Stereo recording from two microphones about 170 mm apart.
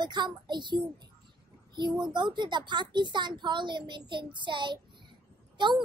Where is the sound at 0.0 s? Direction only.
25° right (ahead or behind).